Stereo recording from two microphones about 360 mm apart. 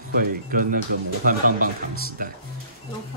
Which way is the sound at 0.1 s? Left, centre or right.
Right.